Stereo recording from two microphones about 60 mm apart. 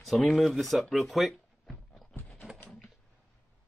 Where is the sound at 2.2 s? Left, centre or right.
Left.